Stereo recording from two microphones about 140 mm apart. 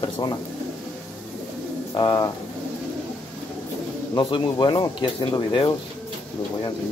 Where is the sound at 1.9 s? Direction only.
30° left (ahead or behind).